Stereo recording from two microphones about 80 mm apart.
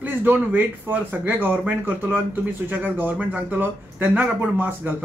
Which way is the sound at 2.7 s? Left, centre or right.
Right.